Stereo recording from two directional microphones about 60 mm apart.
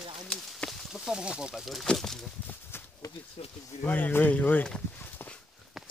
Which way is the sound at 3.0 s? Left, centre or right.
Left.